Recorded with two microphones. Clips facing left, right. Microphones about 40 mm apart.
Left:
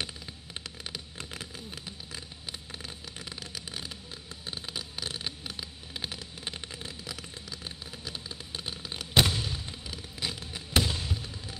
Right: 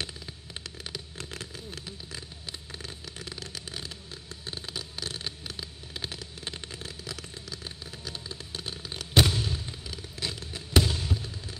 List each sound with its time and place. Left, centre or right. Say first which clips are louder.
0.9 s fireworks: right 1 dB; centre
2.8 s vehicle: right 1 dB; centre
4.5 s fireworks: even; centre
10.8 s fireworks: right 2 dB; centre